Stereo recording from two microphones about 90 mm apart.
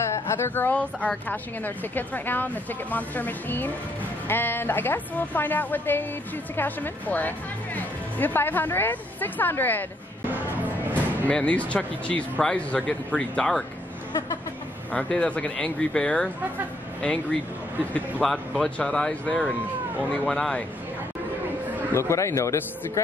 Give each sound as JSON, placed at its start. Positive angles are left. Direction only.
{"t": 0.0, "sound": "a sound", "side_deg": 30}
{"t": 0.7, "sound": "a woman's voice", "side_deg": 15}
{"t": 10.3, "sound": "music", "side_deg": -20}
{"t": 11.2, "sound": "speech", "side_deg": 15}
{"t": 14.9, "sound": "speech", "side_deg": 15}
{"t": 22.1, "sound": "speech", "side_deg": 30}